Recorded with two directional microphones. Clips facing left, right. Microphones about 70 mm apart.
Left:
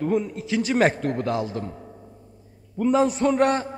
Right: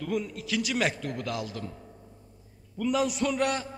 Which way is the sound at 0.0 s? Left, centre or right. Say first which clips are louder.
Left 7 dB; left.